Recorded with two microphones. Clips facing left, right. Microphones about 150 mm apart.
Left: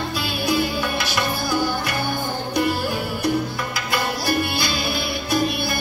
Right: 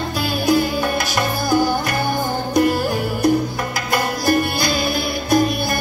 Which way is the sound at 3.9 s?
45° right (ahead or behind).